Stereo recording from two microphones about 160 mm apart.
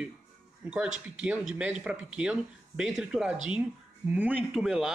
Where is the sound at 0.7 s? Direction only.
5° right (ahead or behind).